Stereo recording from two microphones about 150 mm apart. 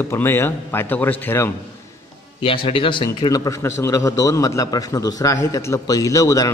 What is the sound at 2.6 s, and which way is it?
A man's voice, 35° left (ahead or behind).